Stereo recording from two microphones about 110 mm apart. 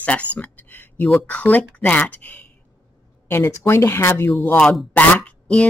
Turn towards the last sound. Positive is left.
turn(degrees=10)  # may be behind; listen again after turning